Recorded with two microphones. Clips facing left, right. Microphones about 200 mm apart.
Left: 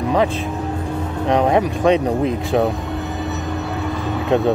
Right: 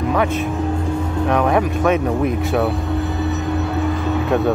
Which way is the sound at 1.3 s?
20° left (ahead or behind).